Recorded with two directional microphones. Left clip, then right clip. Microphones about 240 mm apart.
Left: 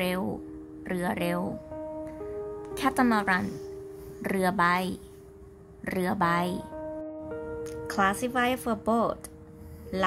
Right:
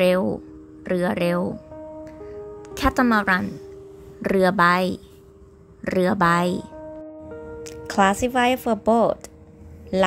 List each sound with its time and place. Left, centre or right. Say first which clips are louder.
0.0 s speech: right 11 dB; centre
2.6 s speech: right 5 dB; centre
6.8 s music: even; centre
7.6 s speech: right 7 dB; centre